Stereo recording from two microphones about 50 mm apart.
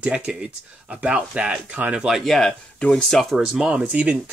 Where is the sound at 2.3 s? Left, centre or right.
Centre.